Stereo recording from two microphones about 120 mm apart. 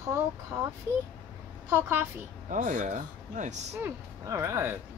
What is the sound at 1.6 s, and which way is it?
Speech, 20° right (ahead or behind).